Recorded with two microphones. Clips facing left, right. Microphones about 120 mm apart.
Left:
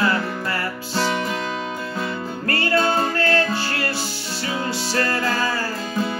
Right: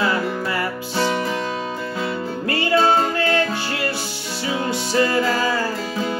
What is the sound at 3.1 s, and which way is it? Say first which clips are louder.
Music: even; 20° right (ahead or behind).